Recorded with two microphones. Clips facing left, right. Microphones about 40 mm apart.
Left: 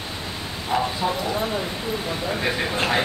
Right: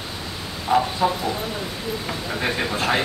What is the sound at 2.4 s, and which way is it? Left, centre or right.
Speech, centre.